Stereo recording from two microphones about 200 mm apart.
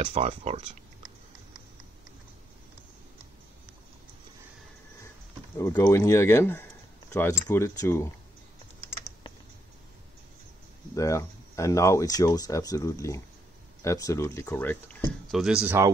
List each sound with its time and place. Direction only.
0.0 s speech: 30° right (ahead or behind)
5.6 s speech: 15° left (ahead or behind)
11.0 s speech: 15° left (ahead or behind)
15.4 s speech: 5° right (ahead or behind)